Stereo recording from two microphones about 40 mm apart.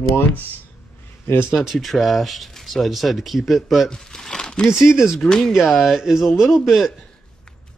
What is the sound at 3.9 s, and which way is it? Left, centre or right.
Crumpling, centre.